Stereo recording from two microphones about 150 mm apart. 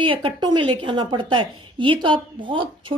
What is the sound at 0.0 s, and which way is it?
A woman's voice, 35° right (ahead or behind).